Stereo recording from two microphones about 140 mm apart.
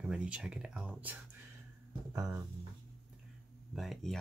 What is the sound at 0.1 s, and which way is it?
Speech, 5° right (ahead or behind).